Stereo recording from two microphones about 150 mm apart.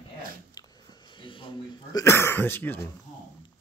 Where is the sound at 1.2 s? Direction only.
35° left (ahead or behind).